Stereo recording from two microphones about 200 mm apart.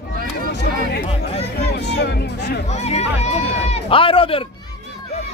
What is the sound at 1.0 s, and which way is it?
Speech, 30° left (ahead or behind).